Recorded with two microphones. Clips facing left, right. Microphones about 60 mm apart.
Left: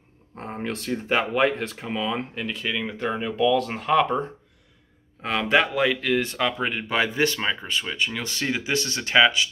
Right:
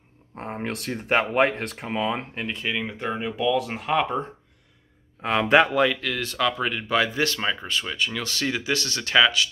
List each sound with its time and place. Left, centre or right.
0.4 s speech: centre
0.7 s speech: right
1.2 s speech: right
1.9 s speech: centre
5.2 s speech: centre
5.8 s speech: centre
6.0 s speech: centre